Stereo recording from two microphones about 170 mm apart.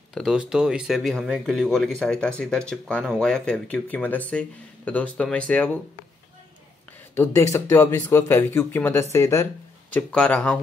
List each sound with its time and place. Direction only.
0.1 s speech: 5° right (ahead or behind)
7.5 s speech: 20° left (ahead or behind)
9.9 s speech: 5° left (ahead or behind)